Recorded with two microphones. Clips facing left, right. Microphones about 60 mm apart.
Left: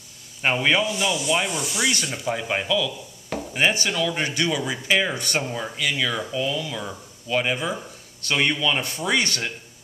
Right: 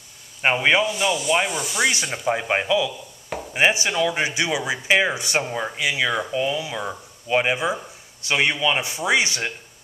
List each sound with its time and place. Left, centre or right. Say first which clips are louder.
0.4 s speech: right 2 dB; centre
0.8 s rub: right 2 dB; centre
2.2 s speech: right 4 dB; right